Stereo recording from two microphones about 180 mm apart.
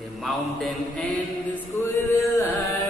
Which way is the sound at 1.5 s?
10° left (ahead or behind).